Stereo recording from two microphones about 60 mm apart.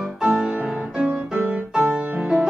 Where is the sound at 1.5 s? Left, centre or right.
Centre.